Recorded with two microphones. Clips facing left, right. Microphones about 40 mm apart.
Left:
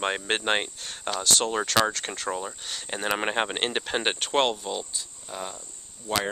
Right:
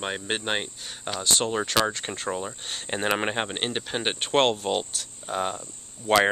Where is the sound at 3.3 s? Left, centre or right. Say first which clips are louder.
Left 2 dB; centre.